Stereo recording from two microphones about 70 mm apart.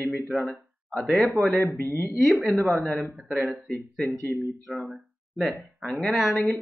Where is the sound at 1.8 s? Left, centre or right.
Left.